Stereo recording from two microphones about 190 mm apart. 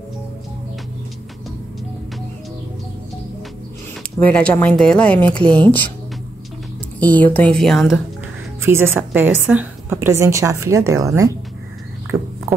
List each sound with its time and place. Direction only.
4.2 s speech: 5° left (ahead or behind)
7.0 s speech: 10° left (ahead or behind)
8.7 s a woman's voice: 10° right (ahead or behind)
12.5 s a sound: 15° right (ahead or behind)